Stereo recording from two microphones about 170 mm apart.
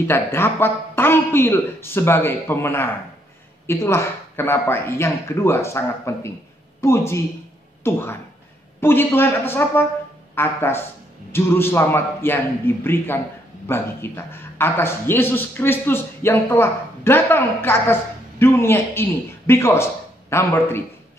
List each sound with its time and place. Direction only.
0.0 s speech: 15° left (ahead or behind)